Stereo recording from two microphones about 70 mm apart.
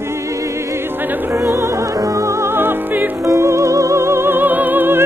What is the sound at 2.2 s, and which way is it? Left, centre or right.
Music, right.